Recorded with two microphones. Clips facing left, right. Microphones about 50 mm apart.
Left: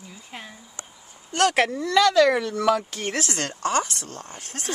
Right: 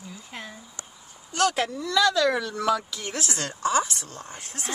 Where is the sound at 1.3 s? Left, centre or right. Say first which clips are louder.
Left 4 dB; left.